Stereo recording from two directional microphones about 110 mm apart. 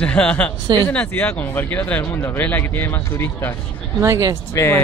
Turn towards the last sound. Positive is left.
turn(degrees=20)  # may be behind; listen again after turning